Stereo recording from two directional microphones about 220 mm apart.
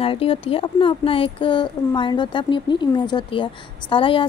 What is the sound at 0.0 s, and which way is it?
A woman's voice, 25° left (ahead or behind).